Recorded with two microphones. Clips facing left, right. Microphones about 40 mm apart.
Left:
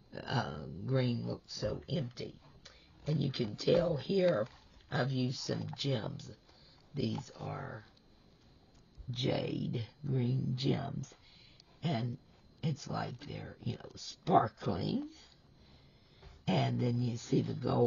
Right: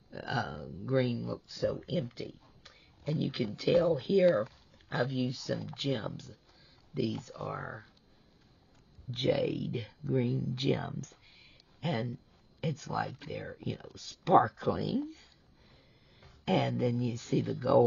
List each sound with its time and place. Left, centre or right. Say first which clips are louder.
0.1 s a sound: right 2 dB; centre
0.8 s speech: right 4 dB; centre
1.1 s speech: right 2 dB; right
2.0 s a sound: right 2 dB; centre
3.0 s speech: right 2 dB; centre
3.5 s speech: right 3 dB; right
4.2 s a sound: right 3 dB; centre
4.9 s speech: right 2 dB; right
5.7 s speech: right 3 dB; right
9.1 s speech: right 5 dB; right
16.7 s speech: right 3 dB; right